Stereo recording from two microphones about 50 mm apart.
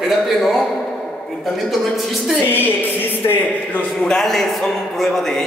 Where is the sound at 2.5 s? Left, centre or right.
Left.